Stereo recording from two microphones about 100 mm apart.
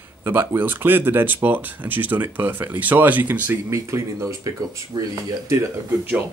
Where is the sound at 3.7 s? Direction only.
30° right (ahead or behind).